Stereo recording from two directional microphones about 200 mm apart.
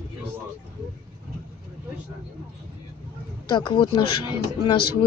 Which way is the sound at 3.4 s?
25° left (ahead or behind).